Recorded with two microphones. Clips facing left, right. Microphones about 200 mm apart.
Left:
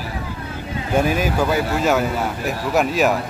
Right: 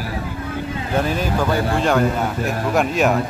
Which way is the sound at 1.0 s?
10° left (ahead or behind).